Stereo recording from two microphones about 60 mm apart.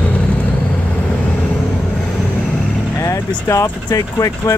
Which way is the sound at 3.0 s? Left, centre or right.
Left.